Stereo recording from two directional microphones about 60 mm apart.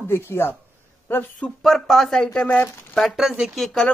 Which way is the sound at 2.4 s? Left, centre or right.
Left.